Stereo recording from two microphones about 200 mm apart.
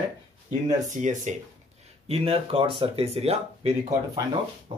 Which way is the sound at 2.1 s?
30° right (ahead or behind).